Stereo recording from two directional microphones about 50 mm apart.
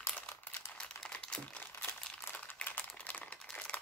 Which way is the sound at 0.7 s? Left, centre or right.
Centre.